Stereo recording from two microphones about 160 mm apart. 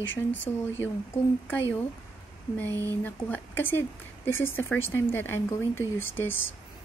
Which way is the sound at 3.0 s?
15° left (ahead or behind).